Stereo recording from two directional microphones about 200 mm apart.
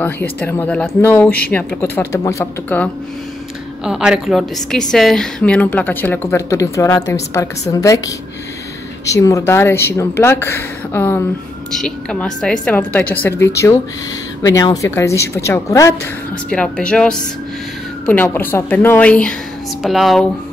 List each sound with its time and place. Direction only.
0.0 s a woman's voice: 10° left (ahead or behind)
3.8 s a woman's voice: 5° right (ahead or behind); by 8.1 s 15° left (ahead or behind)
9.1 s a woman's voice: 15° left (ahead or behind)
16.4 s a woman's voice: 5° left (ahead or behind)